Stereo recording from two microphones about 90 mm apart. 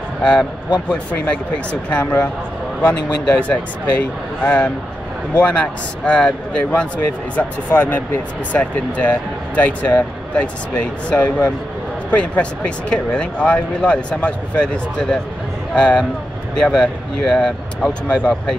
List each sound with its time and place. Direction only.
0.2 s speech: 10° left (ahead or behind)
7.7 s speech: 25° left (ahead or behind); by 18.6 s 5° left (ahead or behind)